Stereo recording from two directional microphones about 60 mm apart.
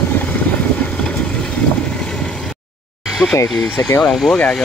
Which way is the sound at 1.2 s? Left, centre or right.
Centre.